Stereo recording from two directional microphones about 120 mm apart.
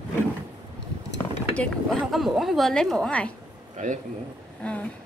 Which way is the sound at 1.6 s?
Centre (ahead or behind).